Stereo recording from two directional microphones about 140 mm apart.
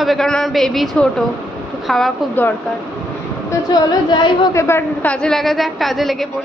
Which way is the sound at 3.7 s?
30° left (ahead or behind).